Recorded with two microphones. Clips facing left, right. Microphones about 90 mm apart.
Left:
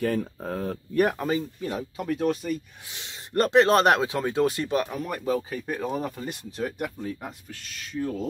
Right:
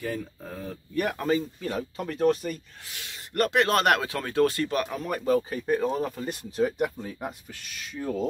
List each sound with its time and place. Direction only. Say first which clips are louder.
0.0 s speech: left 6 dB; 55° left (ahead or behind)
1.1 s speech: right 1 dB; 15° left (ahead or behind)
2.9 s speech: left 6 dB; 25° left (ahead or behind)
4.8 s speech: right 1 dB; centre (ahead or behind)